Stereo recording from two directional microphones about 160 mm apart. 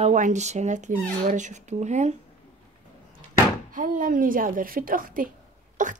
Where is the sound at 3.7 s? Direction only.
55° right (ahead or behind).